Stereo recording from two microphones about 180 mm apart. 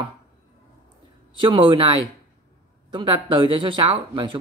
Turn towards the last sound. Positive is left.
turn(degrees=-30)  # may be behind; listen again after turning